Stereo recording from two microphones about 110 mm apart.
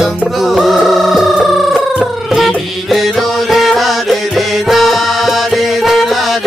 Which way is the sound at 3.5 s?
Centre (ahead or behind).